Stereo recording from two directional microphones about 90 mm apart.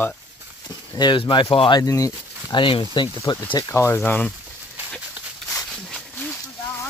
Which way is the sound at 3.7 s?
30° left (ahead or behind).